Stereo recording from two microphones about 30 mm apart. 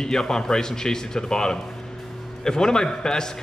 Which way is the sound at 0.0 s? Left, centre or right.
Centre.